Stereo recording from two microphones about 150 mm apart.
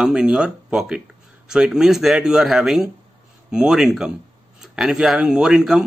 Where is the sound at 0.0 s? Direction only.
5° right (ahead or behind).